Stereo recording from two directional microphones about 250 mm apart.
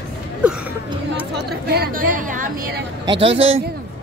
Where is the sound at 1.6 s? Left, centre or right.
Right.